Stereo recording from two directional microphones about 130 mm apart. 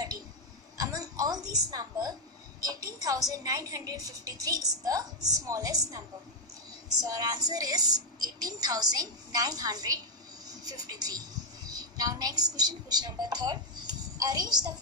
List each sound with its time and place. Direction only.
0.7 s a sound: 30° right (ahead or behind)
2.6 s a woman's voice: 30° right (ahead or behind)
7.1 s a woman's voice: 30° right (ahead or behind)